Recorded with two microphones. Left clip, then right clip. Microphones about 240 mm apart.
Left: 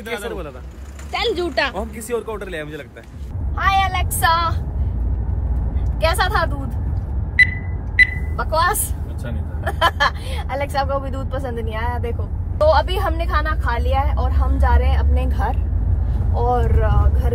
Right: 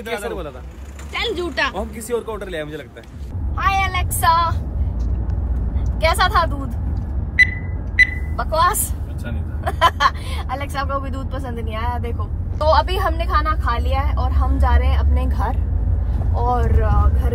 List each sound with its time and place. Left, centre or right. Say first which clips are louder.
0.0 s speech: right 1 dB; centre
5.9 s a woman's voice: right 2 dB; centre
7.3 s a sound: even; left
8.4 s a woman's voice: right 1 dB; centre